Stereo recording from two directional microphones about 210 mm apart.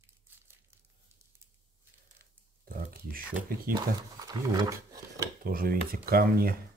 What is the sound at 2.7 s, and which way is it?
Speech, 45° right (ahead or behind).